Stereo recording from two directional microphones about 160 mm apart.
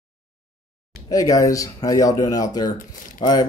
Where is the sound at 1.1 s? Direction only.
20° left (ahead or behind).